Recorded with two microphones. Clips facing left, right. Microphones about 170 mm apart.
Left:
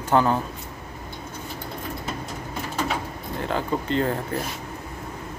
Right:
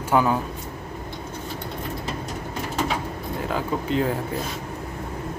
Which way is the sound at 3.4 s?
5° right (ahead or behind).